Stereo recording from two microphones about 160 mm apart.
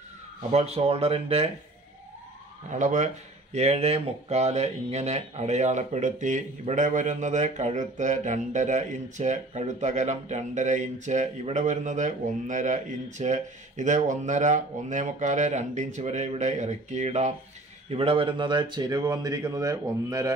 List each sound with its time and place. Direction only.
0.5 s speech: 40° right (ahead or behind)
2.7 s speech: 50° right (ahead or behind); by 20.3 s 20° right (ahead or behind)